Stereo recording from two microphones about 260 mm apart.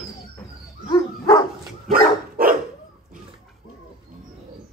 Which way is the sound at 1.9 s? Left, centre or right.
Right.